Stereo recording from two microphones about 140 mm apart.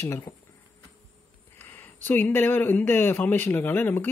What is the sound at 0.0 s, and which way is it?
Speech, 20° left (ahead or behind).